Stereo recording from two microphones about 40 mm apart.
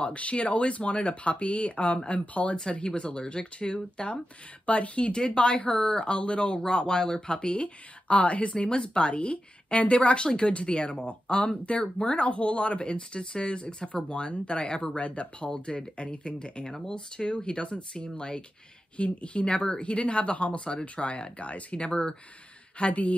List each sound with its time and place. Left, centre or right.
0.0 s speech: left
7.6 s speech: left
22.8 s speech: left